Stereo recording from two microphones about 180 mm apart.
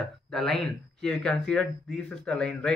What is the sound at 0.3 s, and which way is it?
Speech, centre (ahead or behind).